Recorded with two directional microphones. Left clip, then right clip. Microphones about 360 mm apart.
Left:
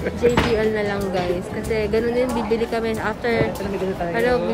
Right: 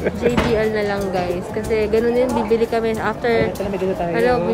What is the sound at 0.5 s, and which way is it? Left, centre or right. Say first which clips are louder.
A woman's voice: right 2 dB; centre.